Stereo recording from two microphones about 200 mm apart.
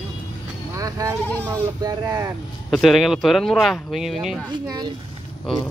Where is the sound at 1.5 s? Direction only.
20° right (ahead or behind).